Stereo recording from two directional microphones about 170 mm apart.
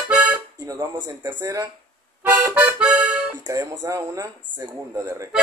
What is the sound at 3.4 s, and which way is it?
Speech, 20° right (ahead or behind).